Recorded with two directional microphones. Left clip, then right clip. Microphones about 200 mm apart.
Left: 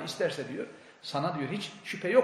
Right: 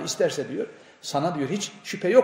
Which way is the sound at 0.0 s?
55° right (ahead or behind).